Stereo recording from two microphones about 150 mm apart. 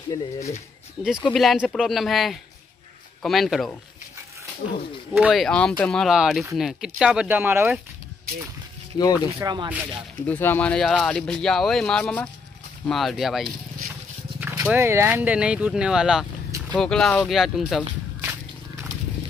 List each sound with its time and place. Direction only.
0.1 s speech: 20° left (ahead or behind)
1.2 s speech: centre (ahead or behind)
5.1 s speech: 5° right (ahead or behind)
8.9 s speech: 25° left (ahead or behind)
9.4 s speech: 25° right (ahead or behind)
10.2 s speech: 10° left (ahead or behind)
14.4 s speech: 10° right (ahead or behind)